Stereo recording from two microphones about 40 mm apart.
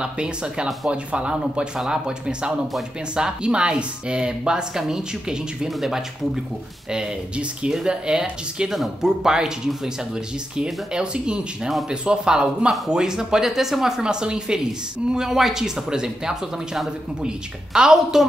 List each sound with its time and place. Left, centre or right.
0.0 s speech: right
5.7 s speech: centre